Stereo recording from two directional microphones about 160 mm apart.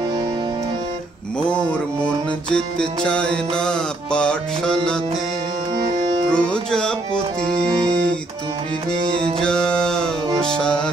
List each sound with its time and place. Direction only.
2.5 s music: 5° left (ahead or behind)
6.3 s music: 5° left (ahead or behind)
9.2 s music: 5° left (ahead or behind)